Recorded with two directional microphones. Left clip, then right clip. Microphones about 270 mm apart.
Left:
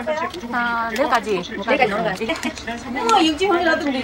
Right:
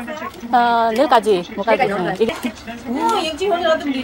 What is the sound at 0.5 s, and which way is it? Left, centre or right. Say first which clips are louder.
Speech: right 7 dB; right.